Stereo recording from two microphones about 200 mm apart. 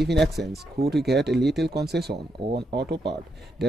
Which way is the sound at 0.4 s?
55° right (ahead or behind).